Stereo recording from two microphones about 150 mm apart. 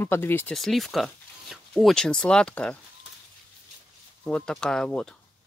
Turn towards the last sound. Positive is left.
turn(degrees=5)  # may be behind; listen again after turning